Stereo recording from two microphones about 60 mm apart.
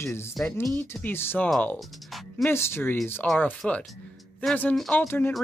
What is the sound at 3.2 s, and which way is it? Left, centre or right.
Speech, left.